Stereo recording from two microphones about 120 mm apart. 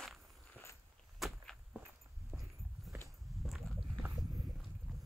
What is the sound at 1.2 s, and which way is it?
Walk, centre (ahead or behind).